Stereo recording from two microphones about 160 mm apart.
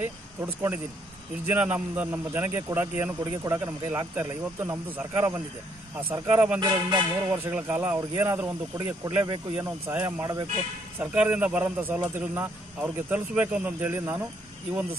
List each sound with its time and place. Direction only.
0.4 s a man's voice: 15° right (ahead or behind)
6.6 s speech: 30° right (ahead or behind)
7.3 s a man's voice: 10° right (ahead or behind)
9.8 s a man's voice: 15° right (ahead or behind)